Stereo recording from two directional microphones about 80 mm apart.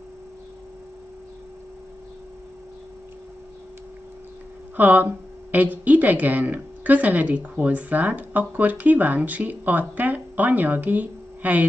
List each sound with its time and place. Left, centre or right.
4.7 s a woman's voice: right